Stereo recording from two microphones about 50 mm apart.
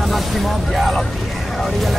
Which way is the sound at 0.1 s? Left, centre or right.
Centre.